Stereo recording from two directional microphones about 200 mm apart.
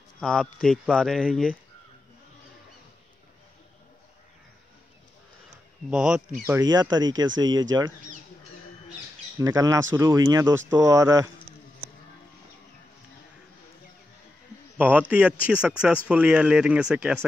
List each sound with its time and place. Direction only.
0.2 s speech: centre (ahead or behind)
5.9 s speech: 5° right (ahead or behind)
6.6 s speech: 20° right (ahead or behind)
7.2 s speech: 70° right (ahead or behind)
9.4 s speech: 15° right (ahead or behind)
14.8 s speech: 5° right (ahead or behind)